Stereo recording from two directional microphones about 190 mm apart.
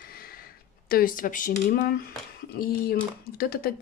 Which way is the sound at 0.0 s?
50° left (ahead or behind).